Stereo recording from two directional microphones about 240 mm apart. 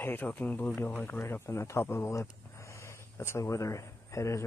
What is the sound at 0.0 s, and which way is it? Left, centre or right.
Speech, centre.